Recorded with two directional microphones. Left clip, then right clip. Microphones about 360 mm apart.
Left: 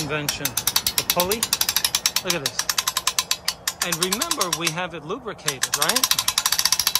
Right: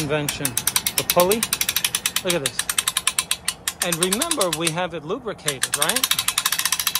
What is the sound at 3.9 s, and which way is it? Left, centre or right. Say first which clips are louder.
Speech: right 2 dB; centre.